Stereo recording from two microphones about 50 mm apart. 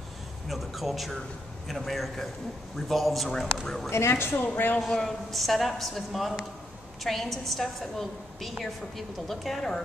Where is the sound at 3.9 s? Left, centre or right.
Left.